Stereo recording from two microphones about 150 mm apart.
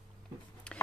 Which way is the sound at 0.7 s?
5° left (ahead or behind).